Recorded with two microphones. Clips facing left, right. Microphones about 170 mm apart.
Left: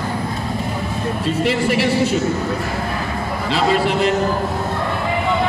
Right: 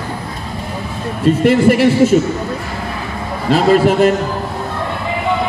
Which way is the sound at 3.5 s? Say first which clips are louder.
Right 7 dB; 45° right (ahead or behind).